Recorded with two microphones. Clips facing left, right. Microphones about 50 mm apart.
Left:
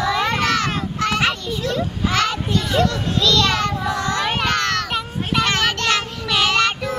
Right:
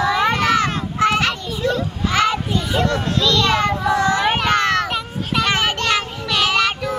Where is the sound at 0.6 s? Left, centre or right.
Centre.